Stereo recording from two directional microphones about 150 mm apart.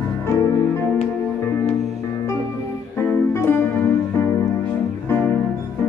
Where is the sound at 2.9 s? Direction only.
15° left (ahead or behind).